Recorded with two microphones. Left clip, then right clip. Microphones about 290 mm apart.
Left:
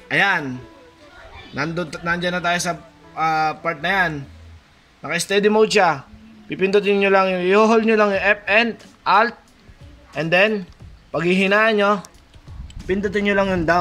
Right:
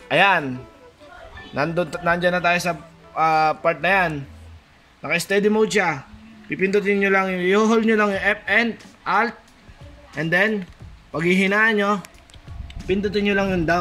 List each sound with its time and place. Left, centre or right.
0.1 s speech: right
2.2 s a man's voice: centre